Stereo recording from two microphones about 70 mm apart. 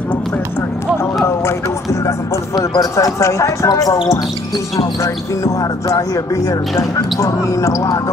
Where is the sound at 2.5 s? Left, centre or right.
Left.